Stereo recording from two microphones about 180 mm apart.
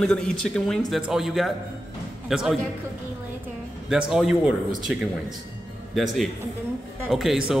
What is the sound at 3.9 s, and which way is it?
A man's voice, centre (ahead or behind).